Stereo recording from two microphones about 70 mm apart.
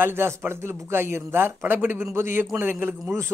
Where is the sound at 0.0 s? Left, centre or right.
Right.